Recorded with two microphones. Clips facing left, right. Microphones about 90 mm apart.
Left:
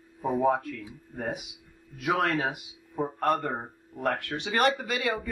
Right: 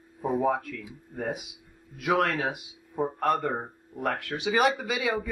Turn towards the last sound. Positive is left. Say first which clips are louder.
# right 1 dB
turn(degrees=-5)  # may be behind; listen again after turning